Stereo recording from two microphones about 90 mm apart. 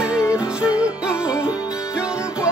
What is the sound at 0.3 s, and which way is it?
Music, 10° right (ahead or behind).